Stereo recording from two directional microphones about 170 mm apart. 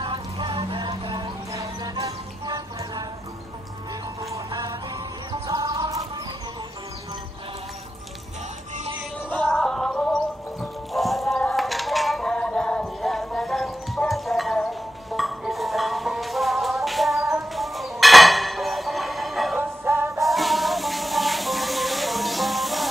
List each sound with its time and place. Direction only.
0.0 s music: 30° right (ahead or behind)
4.5 s music: 20° right (ahead or behind)
9.3 s music: 5° left (ahead or behind)
19.8 s music: 15° right (ahead or behind)
20.2 s music: centre (ahead or behind)